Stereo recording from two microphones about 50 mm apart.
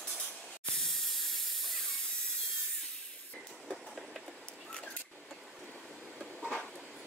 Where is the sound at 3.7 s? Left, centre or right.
Centre.